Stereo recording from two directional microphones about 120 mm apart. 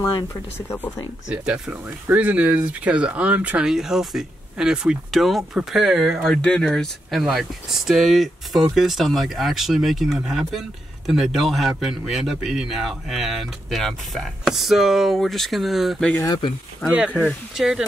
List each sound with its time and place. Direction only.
0.0 s speech: 20° left (ahead or behind)
1.3 s speech: 10° right (ahead or behind)
16.9 s speech: 10° right (ahead or behind)